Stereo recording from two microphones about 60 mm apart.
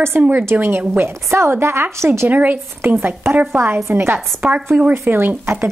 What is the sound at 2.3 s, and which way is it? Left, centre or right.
Speech, right.